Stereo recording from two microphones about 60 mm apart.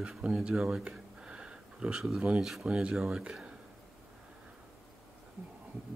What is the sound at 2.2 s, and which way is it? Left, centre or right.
Speech, centre.